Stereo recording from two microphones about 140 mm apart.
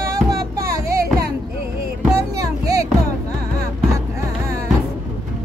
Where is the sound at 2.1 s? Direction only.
25° right (ahead or behind).